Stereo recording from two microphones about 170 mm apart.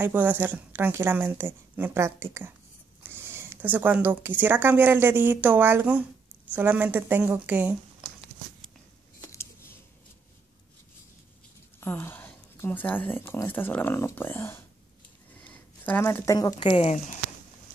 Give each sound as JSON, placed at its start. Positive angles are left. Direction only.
{"t": 0.0, "sound": "a woman's voice", "side_deg": -10}
{"t": 9.2, "sound": "a sound", "side_deg": 15}
{"t": 11.8, "sound": "a woman's voice", "side_deg": 15}
{"t": 16.6, "sound": "speech", "side_deg": 40}